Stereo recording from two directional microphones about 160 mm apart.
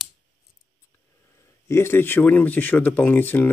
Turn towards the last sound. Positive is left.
turn(degrees=10)  # may be behind; listen again after turning